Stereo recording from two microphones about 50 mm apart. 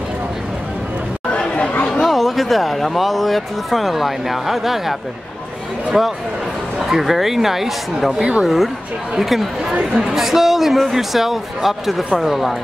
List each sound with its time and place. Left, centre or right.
1.3 s chatter: left
2.0 s speech: centre
5.9 s speech: centre